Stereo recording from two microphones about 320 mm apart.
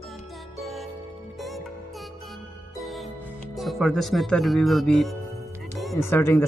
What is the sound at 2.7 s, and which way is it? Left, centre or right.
Music, centre.